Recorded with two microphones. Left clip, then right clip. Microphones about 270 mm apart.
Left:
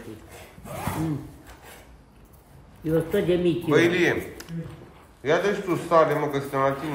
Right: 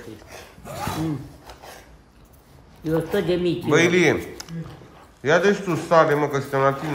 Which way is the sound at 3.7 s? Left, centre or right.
Right.